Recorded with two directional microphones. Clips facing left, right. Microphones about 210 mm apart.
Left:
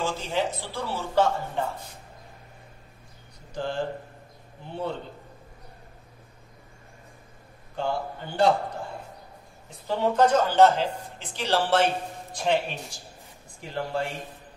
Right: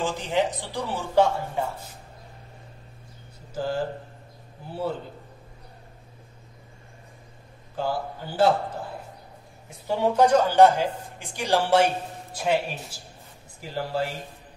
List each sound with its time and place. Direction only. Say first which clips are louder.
0.0 s speech: right 2 dB; 15° right (ahead or behind)
3.5 s a man's voice: right 2 dB; 5° right (ahead or behind)
7.7 s a man's voice: right 1 dB; 5° right (ahead or behind)
9.8 s a man's voice: right 2 dB; 10° right (ahead or behind)